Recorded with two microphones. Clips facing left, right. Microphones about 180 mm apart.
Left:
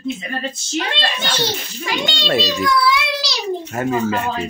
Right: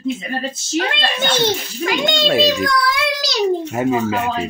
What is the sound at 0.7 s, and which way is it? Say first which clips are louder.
A child's voice: right 3 dB; 50° right (ahead or behind).